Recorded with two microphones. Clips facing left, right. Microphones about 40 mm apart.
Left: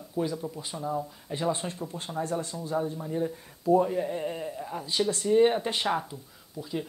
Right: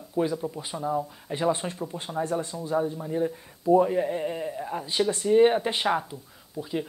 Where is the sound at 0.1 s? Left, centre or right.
Centre.